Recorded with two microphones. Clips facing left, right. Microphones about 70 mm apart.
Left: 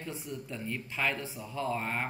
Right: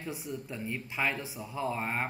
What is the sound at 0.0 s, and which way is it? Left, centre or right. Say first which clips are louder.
Speech: right 1 dB; centre.